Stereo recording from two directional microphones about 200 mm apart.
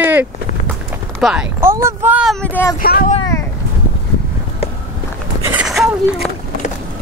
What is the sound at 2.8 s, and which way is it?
Speech, 45° left (ahead or behind).